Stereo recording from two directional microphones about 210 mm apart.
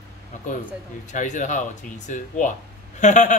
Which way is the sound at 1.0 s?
35° left (ahead or behind).